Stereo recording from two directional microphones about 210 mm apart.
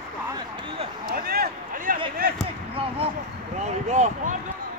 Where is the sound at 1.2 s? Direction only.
45° right (ahead or behind).